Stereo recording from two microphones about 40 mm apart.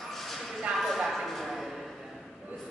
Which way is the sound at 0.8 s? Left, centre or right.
Centre.